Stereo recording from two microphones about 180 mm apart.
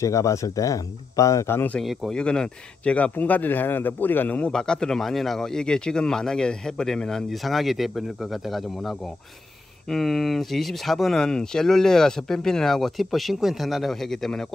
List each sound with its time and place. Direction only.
0.0 s speech: 15° left (ahead or behind)
1.8 s speech: centre (ahead or behind)